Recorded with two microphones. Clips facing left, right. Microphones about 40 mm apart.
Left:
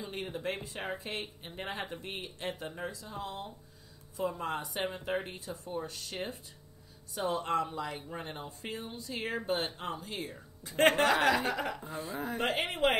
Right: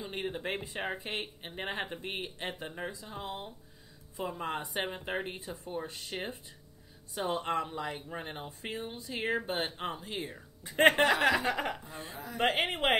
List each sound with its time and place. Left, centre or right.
0.0 s speech: right
7.2 s speech: right
12.1 s speech: left
12.4 s a woman's voice: right